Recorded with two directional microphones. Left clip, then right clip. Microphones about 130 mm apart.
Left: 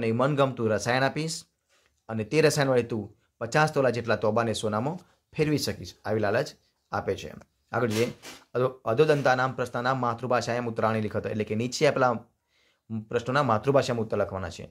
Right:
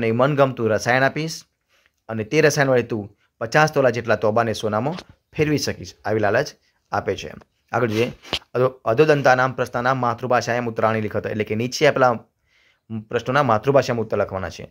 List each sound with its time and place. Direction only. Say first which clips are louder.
0.0 s speech: right 7 dB; 25° right (ahead or behind)